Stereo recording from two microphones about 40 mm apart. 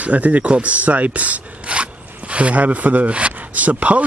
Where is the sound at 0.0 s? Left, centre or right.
Right.